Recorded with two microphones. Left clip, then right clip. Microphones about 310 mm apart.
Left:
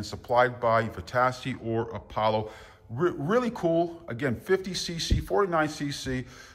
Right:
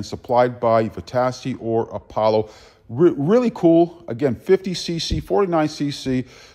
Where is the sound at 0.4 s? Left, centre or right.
Centre.